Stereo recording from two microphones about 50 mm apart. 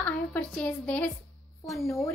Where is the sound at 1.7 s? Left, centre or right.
Centre.